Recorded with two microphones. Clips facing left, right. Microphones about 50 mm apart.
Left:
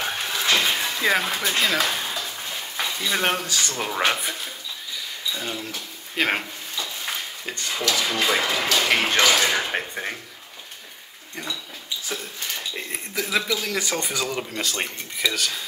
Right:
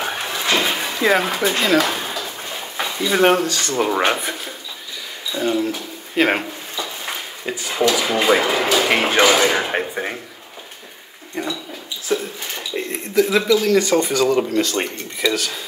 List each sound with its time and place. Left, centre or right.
0.0 s a sound: centre
3.0 s speech: centre
3.4 s speech: centre
3.7 s speech: centre
6.8 s a sound: centre
7.7 s speech: centre
11.4 s speech: centre
12.2 s a sound: centre
12.7 s speech: centre